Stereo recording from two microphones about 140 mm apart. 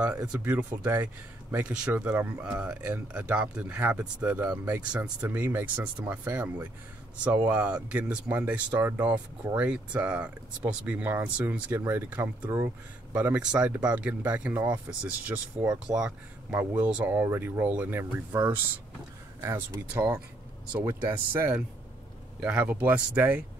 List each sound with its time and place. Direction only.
0.3 s speech: 10° right (ahead or behind)
19.4 s speech: 25° right (ahead or behind)
20.7 s speech: 10° right (ahead or behind)